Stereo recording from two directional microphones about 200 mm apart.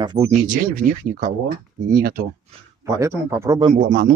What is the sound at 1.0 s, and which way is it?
Speech, 40° right (ahead or behind).